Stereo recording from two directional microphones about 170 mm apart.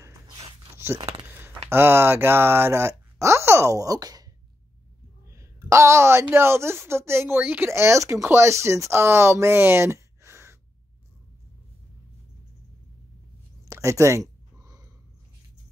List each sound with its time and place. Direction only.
0.9 s speech: 30° right (ahead or behind)
1.2 s speech: 10° right (ahead or behind)
5.3 s a woman's voice: 15° right (ahead or behind)
13.7 s a sound: 15° right (ahead or behind)